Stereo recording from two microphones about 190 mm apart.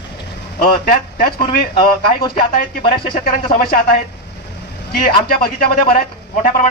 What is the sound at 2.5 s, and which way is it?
Speech, 50° left (ahead or behind).